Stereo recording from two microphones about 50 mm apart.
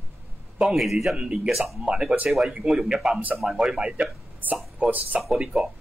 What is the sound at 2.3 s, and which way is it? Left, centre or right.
Speech, centre.